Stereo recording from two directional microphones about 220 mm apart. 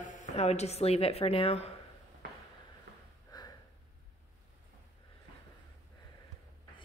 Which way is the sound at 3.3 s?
20° left (ahead or behind).